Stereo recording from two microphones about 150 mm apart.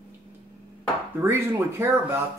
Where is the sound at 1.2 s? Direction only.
15° right (ahead or behind).